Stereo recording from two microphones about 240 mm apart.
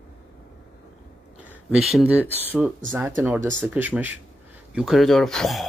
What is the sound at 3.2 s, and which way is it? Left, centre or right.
Speech, centre.